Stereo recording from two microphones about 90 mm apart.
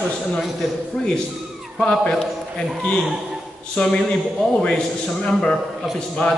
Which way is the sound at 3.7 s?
10° left (ahead or behind).